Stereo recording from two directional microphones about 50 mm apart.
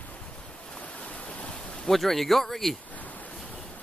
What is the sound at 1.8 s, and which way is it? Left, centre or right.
Speech, centre.